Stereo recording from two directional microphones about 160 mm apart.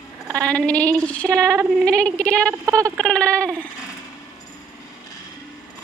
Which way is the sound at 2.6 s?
20° right (ahead or behind).